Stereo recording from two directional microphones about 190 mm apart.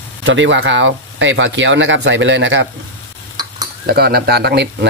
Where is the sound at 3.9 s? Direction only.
55° right (ahead or behind).